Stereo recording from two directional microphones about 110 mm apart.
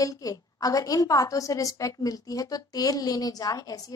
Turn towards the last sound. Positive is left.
turn(degrees=35)  # may be behind; listen again after turning